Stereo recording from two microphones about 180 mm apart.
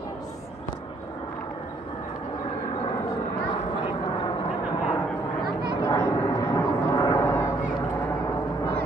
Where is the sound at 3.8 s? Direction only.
25° left (ahead or behind).